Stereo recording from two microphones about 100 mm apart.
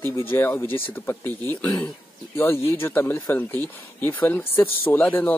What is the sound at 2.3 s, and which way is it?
Speech, 25° left (ahead or behind).